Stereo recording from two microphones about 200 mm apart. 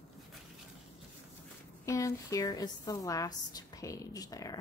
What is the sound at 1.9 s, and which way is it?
A woman's voice, 15° left (ahead or behind).